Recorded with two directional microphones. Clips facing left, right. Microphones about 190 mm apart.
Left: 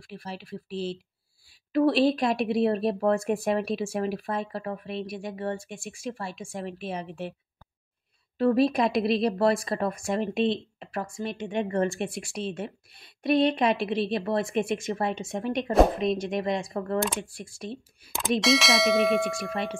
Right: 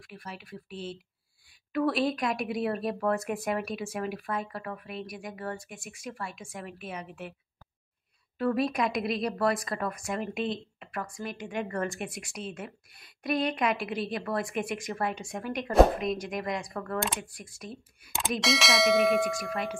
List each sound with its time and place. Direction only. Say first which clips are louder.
0.0 s speech: left 5 dB; 30° left (ahead or behind)
8.4 s speech: left 5 dB; 30° left (ahead or behind)
18.4 s bell: left 2 dB; centre (ahead or behind)
19.5 s speech: left 2 dB; 25° left (ahead or behind)